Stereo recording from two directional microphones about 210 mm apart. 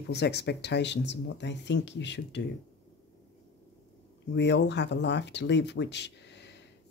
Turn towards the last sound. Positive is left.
turn(degrees=55)  # may be behind; listen again after turning